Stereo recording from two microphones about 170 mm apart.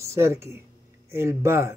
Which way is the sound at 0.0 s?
15° right (ahead or behind).